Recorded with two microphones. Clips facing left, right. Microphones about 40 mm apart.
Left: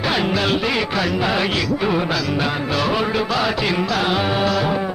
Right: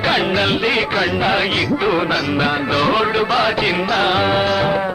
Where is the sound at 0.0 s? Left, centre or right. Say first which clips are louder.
Right 3 dB; right.